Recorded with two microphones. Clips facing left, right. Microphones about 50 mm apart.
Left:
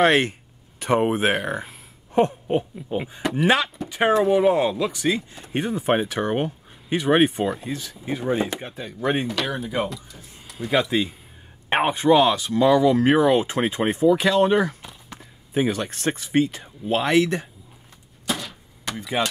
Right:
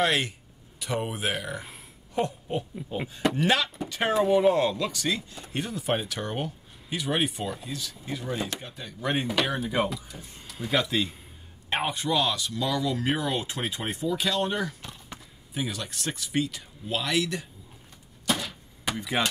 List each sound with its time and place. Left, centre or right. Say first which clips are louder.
0.0 s speech: left 7 dB; left
2.1 s a sound: left 8 dB; left
3.2 s speech: right 1 dB; centre
3.4 s speech: left 7 dB; left
4.1 s speech: left 3 dB; centre; by 8.5 s left
8.7 s speech: left 5 dB; centre
9.3 s speech: left 1 dB; centre
10.7 s speech: left 5 dB; centre
11.7 s speech: left 9 dB; left
18.2 s vehicle: even; centre